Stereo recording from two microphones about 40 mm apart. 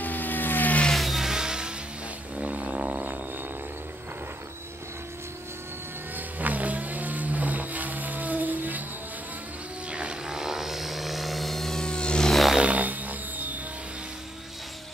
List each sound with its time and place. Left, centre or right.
0.0 s vehicle: left
0.9 s vehicle: centre
2.3 s a sound: right
6.1 s vehicle: right
9.8 s vehicle: right
10.2 s vehicle: centre
12.6 s music: right